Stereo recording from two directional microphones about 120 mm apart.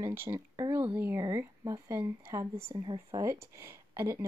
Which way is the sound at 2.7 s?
40° right (ahead or behind).